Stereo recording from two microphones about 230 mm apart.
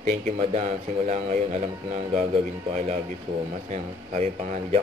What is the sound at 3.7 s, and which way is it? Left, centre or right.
Speech, right.